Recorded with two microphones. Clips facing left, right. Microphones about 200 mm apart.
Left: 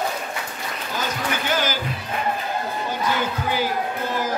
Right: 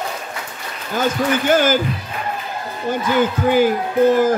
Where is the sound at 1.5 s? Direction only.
50° right (ahead or behind).